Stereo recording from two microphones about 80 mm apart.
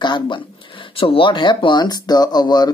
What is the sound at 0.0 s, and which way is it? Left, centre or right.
Speech, left.